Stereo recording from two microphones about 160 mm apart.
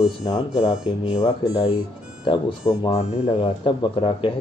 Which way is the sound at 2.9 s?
35° left (ahead or behind).